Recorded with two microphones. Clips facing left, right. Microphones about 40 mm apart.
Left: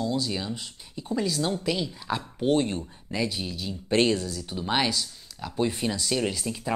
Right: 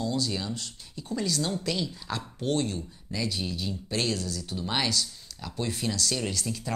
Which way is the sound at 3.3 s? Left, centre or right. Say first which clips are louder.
Even; centre.